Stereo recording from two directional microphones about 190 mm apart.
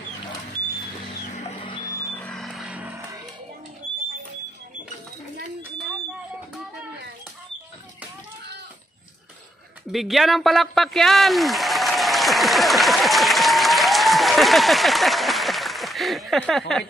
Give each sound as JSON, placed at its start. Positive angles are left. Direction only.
{"t": 1.2, "sound": "music", "side_deg": 30}
{"t": 2.0, "sound": "music", "side_deg": 10}
{"t": 9.9, "sound": "speech", "side_deg": 0}